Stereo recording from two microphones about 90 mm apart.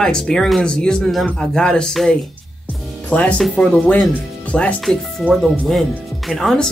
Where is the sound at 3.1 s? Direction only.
15° left (ahead or behind).